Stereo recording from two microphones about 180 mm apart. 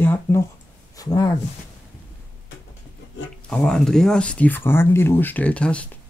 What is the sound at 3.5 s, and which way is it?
Speech, 5° left (ahead or behind).